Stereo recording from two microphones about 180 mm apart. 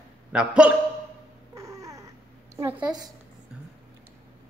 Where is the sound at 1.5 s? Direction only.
15° right (ahead or behind).